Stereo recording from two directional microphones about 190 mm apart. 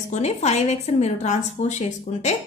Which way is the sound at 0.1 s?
35° left (ahead or behind).